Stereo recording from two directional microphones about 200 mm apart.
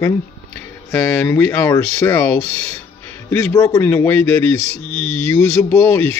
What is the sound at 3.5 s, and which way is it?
Speech, 15° left (ahead or behind).